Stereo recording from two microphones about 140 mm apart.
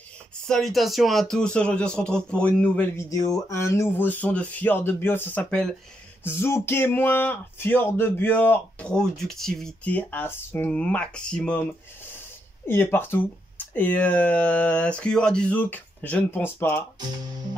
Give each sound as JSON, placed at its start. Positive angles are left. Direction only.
{"t": 0.5, "sound": "speech", "side_deg": 0}
{"t": 3.0, "sound": "speech", "side_deg": 25}
{"t": 6.2, "sound": "speech", "side_deg": 15}
{"t": 12.6, "sound": "speech", "side_deg": 15}
{"t": 17.0, "sound": "speech", "side_deg": -30}